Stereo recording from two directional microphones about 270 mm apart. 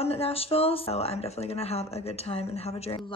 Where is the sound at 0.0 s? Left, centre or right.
Left.